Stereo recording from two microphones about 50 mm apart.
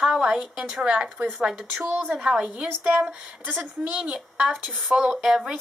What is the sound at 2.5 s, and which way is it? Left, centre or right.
A woman's voice, right.